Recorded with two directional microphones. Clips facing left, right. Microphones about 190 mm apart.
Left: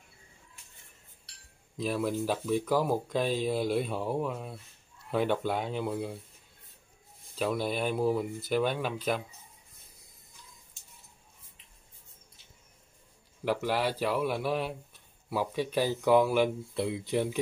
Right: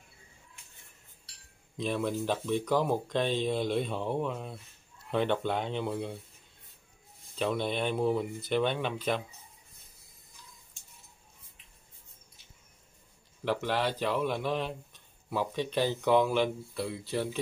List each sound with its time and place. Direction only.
1.8 s speech: 5° left (ahead or behind)
7.3 s speech: 5° left (ahead or behind)
13.4 s speech: 10° left (ahead or behind)